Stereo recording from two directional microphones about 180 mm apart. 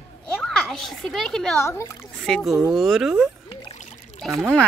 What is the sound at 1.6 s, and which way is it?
Speech, 15° left (ahead or behind).